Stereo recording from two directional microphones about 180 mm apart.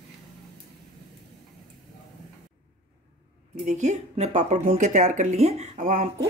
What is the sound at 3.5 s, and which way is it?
Speech, 40° right (ahead or behind).